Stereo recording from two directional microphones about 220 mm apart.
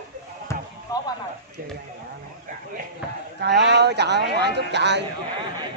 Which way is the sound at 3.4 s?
50° right (ahead or behind).